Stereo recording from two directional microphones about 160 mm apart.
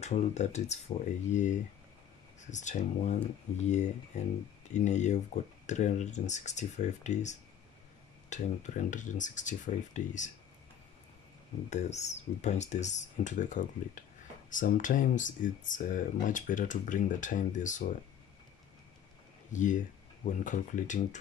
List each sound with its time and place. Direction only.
0.0 s speech: 45° left (ahead or behind)
11.7 s speech: 45° left (ahead or behind)
19.5 s speech: 50° left (ahead or behind)